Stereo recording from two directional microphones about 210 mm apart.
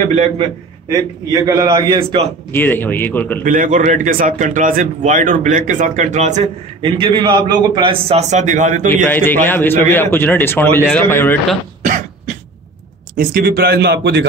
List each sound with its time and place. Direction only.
0.0 s a man's voice: 30° right (ahead or behind)
0.9 s a man's voice: 15° right (ahead or behind)
2.5 s a man's voice: 10° left (ahead or behind)
3.4 s a man's voice: 40° right (ahead or behind)
9.0 s a man's voice: 10° left (ahead or behind)
13.2 s a man's voice: 45° right (ahead or behind)